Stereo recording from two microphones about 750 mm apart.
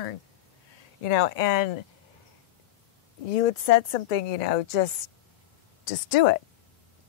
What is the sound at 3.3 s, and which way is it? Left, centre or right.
A woman's voice, left.